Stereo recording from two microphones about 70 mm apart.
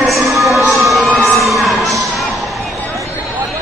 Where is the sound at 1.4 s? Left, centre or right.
Centre.